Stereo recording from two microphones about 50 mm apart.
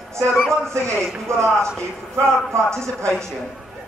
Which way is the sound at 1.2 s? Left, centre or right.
Right.